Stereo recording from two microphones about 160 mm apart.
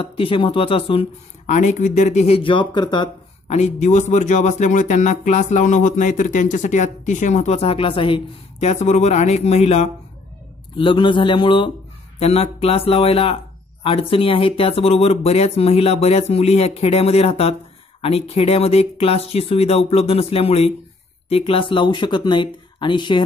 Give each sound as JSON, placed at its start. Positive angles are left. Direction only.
{"t": 0.0, "sound": "speech", "side_deg": 35}
{"t": 1.5, "sound": "speech", "side_deg": 50}
{"t": 3.4, "sound": "speech", "side_deg": 45}
{"t": 10.8, "sound": "speech", "side_deg": 30}